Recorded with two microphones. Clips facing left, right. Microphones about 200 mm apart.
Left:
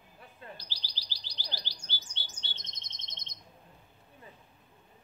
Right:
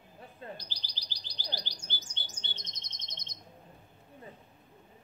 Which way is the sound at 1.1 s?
50° right (ahead or behind).